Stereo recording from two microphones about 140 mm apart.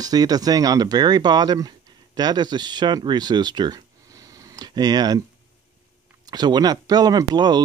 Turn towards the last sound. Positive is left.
turn(degrees=-30)  # may be behind; listen again after turning